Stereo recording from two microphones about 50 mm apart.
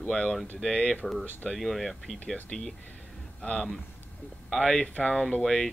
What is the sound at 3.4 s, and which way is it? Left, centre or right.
Speech, left.